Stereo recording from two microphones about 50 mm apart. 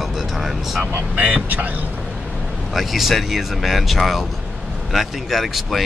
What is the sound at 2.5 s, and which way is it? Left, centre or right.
Speech, centre.